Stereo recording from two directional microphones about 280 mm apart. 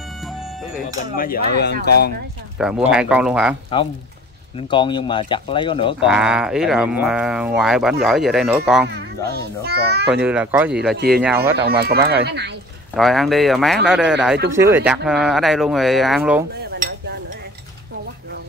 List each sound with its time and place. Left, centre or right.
0.2 s music: centre
1.1 s speech: left
2.6 s speech: centre
4.6 s speech: centre
6.0 s speech: centre
8.8 s a child's voice: right
10.0 s speech: centre
11.5 s a child's voice: right
12.9 s speech: centre
16.7 s a sound: right